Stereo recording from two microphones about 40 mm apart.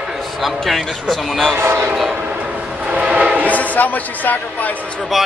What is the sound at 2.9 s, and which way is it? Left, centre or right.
Train, right.